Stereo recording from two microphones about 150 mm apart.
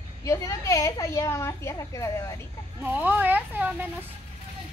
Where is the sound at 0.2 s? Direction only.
20° left (ahead or behind).